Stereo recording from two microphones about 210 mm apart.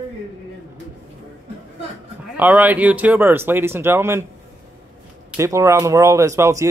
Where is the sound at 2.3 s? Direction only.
10° right (ahead or behind).